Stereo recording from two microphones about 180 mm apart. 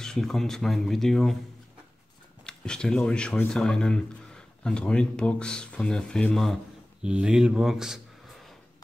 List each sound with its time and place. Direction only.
0.0 s speech: 5° left (ahead or behind)
2.4 s speech: 5° left (ahead or behind)